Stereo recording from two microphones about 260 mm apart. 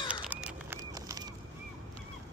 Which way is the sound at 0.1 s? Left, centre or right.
Centre.